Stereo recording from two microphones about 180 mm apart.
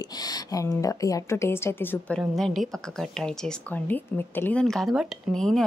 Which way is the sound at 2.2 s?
Centre (ahead or behind).